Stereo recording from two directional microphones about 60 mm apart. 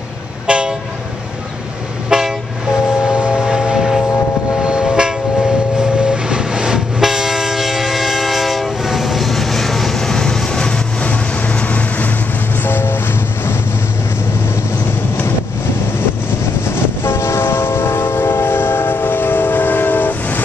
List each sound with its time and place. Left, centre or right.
0.5 s train: centre
2.0 s train: centre
3.1 s vehicle: centre
4.6 s train: centre
11.1 s vehicle: left
12.6 s vehicle: left
16.7 s train: left